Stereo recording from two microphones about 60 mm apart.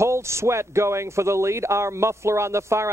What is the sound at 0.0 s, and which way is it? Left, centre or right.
Speech, right.